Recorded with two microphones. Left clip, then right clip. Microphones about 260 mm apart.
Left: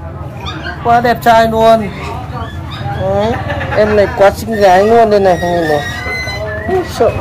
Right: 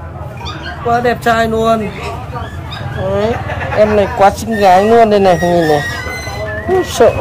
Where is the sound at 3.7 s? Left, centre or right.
Right.